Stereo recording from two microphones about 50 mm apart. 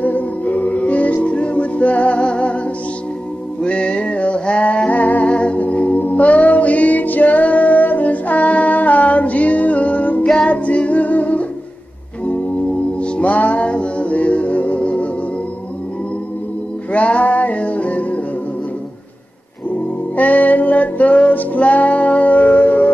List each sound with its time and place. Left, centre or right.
0.0 s music: left
3.6 s music: left
13.0 s music: left
16.9 s music: left
20.2 s music: left